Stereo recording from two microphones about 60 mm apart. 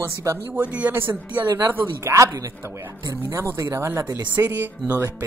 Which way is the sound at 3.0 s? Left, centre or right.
Right.